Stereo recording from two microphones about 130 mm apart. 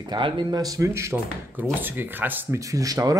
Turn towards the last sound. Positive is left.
turn(degrees=-25)  # may be behind; listen again after turning